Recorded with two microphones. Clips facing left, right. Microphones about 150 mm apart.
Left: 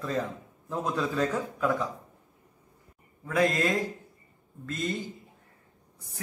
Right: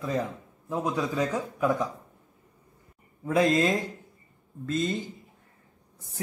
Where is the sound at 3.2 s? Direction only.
20° right (ahead or behind).